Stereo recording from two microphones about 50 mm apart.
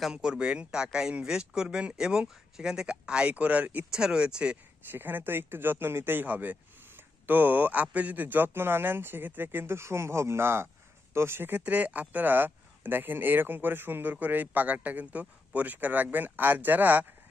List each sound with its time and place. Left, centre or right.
0.1 s speech: centre
3.9 s speech: centre
4.9 s speech: right
11.5 s a man's voice: right
14.1 s a man's voice: right